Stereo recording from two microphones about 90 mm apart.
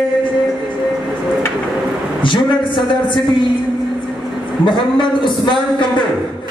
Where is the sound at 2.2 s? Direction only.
65° left (ahead or behind).